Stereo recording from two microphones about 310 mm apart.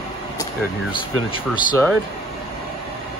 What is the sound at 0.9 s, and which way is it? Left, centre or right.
Speech, centre.